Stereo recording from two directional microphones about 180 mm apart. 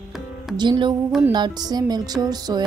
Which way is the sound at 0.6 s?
25° right (ahead or behind).